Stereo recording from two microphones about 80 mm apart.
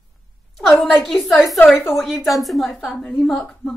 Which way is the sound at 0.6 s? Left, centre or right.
Centre.